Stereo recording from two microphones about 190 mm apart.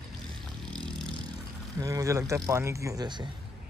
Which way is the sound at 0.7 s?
5° left (ahead or behind).